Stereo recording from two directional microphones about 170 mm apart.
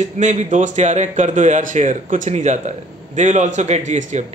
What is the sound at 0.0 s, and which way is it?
A man's voice, 45° right (ahead or behind).